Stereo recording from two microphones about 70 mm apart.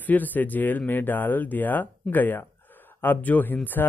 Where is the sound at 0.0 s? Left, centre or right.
Left.